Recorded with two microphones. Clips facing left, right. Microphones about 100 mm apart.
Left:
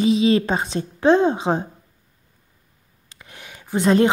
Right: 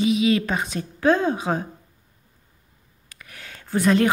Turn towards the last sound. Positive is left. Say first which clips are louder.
# left 3 dB
turn(degrees=25)  # may be behind; listen again after turning